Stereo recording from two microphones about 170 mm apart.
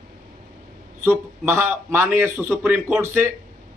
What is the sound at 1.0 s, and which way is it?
A man's voice, 15° right (ahead or behind).